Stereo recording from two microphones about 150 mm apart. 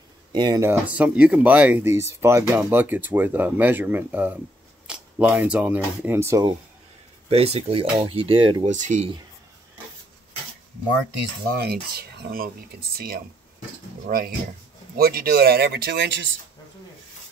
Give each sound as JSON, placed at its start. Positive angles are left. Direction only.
{"t": 0.3, "sound": "speech", "side_deg": -30}
{"t": 0.6, "sound": "speech", "side_deg": -10}
{"t": 4.8, "sound": "a sound", "side_deg": -10}
{"t": 6.0, "sound": "speech", "side_deg": -15}
{"t": 7.2, "sound": "speech", "side_deg": -40}
{"t": 8.6, "sound": "speech", "side_deg": -55}
{"t": 11.4, "sound": "rub", "side_deg": -90}
{"t": 14.0, "sound": "speech", "side_deg": -75}
{"t": 15.0, "sound": "rub", "side_deg": -90}